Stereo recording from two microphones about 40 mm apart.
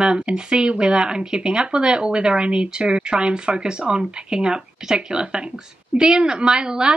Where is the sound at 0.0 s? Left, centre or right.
Centre.